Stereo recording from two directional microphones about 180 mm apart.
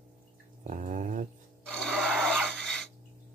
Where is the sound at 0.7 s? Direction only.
45° right (ahead or behind).